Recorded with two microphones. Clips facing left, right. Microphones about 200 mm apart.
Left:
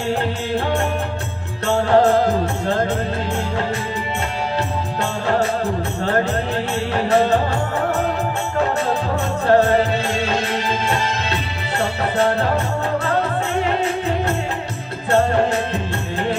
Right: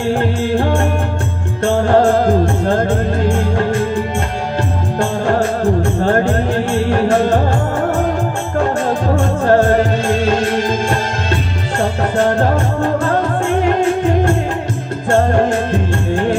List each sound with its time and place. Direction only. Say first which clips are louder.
0.1 s music: right 5 dB; 50° right (ahead or behind)
9.1 s music: right 3 dB; 50° right (ahead or behind)